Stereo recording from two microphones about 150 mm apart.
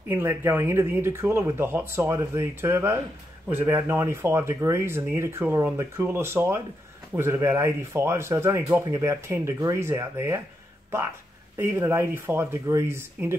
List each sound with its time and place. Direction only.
0.1 s speech: 15° right (ahead or behind)
11.5 s speech: 15° right (ahead or behind)